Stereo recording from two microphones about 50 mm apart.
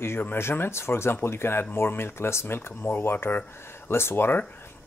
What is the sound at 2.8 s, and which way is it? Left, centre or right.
Speech, left.